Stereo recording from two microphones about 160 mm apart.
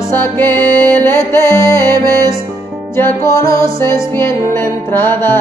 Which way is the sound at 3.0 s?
20° left (ahead or behind).